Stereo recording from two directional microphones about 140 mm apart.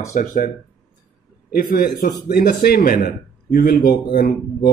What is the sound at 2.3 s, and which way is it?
A man's voice, 90° left.